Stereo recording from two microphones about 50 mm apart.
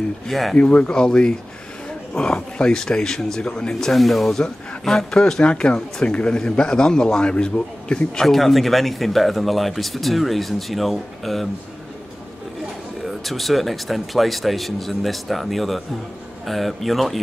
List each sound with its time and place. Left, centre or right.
0.3 s speech: centre
0.6 s a man's voice: left
3.9 s a man's voice: centre
8.3 s speech: centre
13.0 s speech: centre